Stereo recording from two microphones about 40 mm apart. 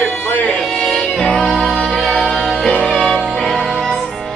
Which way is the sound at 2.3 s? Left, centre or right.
Centre.